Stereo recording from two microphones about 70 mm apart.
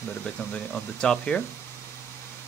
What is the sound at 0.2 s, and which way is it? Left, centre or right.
Speech, centre.